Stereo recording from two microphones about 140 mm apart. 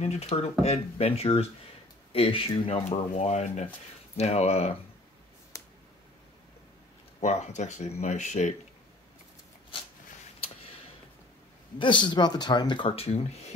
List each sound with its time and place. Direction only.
0.0 s speech: 50° left (ahead or behind)
5.5 s a sound: 25° left (ahead or behind)
7.2 s speech: 55° left (ahead or behind)
11.8 s speech: 35° left (ahead or behind)